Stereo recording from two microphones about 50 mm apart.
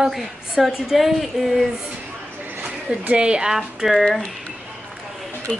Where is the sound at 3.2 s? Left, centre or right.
Centre.